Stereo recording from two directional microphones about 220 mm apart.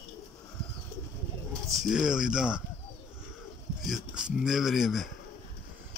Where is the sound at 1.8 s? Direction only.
5° right (ahead or behind).